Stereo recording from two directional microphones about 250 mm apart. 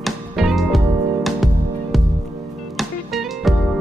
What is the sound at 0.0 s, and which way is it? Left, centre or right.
Music, centre.